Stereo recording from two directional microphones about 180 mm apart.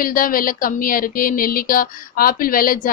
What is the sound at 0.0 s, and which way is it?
Speech, 50° left (ahead or behind).